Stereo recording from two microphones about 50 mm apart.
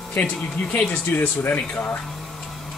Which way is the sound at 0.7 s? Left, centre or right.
Left.